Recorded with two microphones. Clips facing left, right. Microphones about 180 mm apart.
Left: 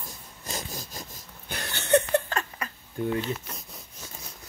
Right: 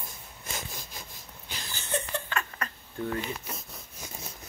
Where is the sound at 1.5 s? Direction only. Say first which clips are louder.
Left 11 dB; 70° left (ahead or behind).